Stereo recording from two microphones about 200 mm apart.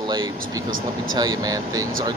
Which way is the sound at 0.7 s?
85° right.